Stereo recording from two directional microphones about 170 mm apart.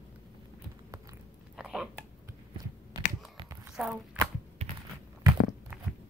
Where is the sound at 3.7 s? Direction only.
5° right (ahead or behind).